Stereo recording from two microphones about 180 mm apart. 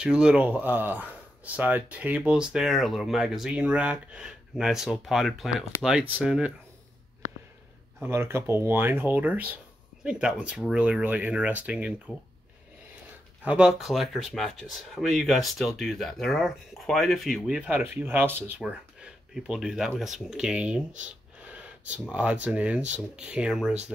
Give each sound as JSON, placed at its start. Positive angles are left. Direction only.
{"t": 0.0, "sound": "speech", "side_deg": -5}
{"t": 8.0, "sound": "speech", "side_deg": -15}
{"t": 13.4, "sound": "speech", "side_deg": -5}
{"t": 21.5, "sound": "gasp", "side_deg": -10}
{"t": 22.1, "sound": "speech", "side_deg": -5}